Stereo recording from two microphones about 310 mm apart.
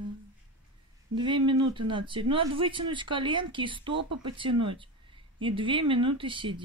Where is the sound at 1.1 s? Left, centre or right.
Centre.